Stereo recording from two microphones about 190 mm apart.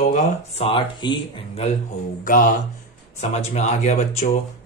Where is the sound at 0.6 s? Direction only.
30° left (ahead or behind).